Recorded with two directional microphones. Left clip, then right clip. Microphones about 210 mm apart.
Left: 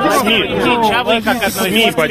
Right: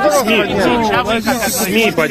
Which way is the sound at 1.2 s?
30° left (ahead or behind).